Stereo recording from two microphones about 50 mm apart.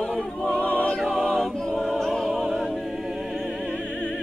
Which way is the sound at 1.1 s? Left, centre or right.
Centre.